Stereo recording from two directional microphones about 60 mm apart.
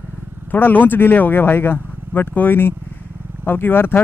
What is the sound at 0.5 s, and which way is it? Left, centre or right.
Speech, left.